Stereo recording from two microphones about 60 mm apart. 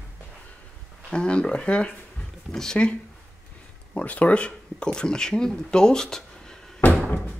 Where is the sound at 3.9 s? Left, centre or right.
Left.